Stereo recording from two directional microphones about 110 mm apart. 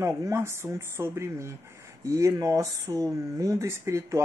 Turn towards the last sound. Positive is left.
turn(degrees=-25)  # may be behind; listen again after turning